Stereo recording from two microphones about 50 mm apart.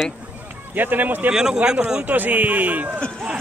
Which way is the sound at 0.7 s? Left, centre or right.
Right.